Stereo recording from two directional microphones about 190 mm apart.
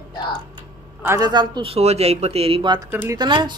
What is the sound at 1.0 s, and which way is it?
A man's voice, 15° right (ahead or behind).